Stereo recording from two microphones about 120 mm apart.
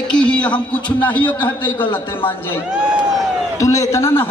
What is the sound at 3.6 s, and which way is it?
Speech, 25° left (ahead or behind).